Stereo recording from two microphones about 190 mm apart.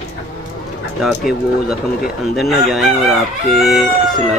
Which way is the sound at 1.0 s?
Centre (ahead or behind).